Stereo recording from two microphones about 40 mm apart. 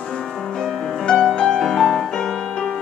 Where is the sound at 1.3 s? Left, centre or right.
Centre.